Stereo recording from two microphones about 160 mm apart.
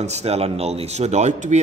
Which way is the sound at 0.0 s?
40° right (ahead or behind).